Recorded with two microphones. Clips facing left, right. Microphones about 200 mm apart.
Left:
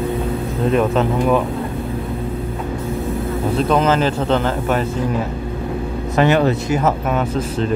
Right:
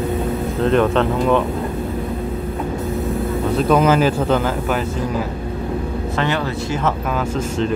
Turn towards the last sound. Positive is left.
turn(degrees=15)  # may be behind; listen again after turning